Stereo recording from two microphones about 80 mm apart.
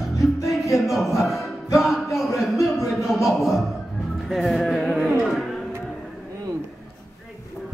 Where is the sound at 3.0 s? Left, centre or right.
Centre.